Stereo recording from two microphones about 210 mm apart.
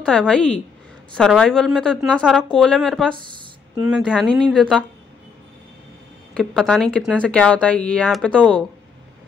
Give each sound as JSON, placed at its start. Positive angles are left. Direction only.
{"t": 0.0, "sound": "speech", "side_deg": 5}
{"t": 6.3, "sound": "speech", "side_deg": 0}